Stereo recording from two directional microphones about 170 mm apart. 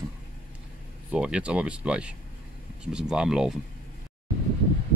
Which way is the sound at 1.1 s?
5° right (ahead or behind).